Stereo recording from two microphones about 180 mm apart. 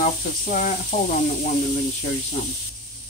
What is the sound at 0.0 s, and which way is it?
Speech, 45° left (ahead or behind).